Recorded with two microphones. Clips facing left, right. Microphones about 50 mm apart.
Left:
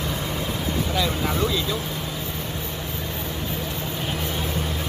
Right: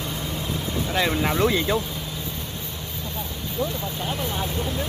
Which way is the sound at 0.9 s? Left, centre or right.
Right.